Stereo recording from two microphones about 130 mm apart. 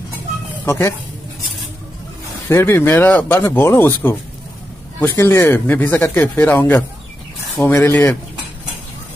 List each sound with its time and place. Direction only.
0.7 s speech: 20° left (ahead or behind)
2.5 s speech: 15° left (ahead or behind)